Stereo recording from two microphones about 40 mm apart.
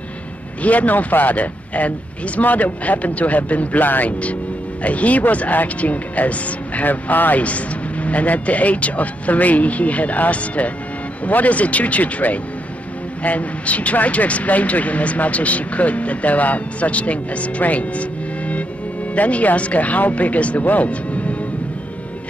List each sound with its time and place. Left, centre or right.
0.6 s speech: left
7.4 s speech: left
19.1 s speech: left